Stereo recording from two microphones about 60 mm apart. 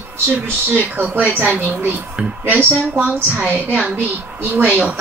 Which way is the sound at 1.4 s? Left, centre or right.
Right.